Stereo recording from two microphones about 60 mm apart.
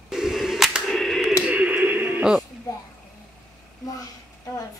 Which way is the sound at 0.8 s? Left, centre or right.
Centre.